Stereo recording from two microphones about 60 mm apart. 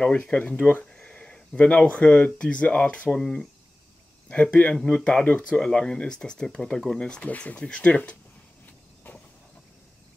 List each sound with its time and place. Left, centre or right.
0.2 s speech: left
0.9 s speech: centre
3.2 s speech: centre
4.3 s speech: left
7.2 s speech: left